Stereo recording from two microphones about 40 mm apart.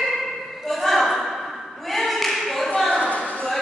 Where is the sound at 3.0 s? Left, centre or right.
Left.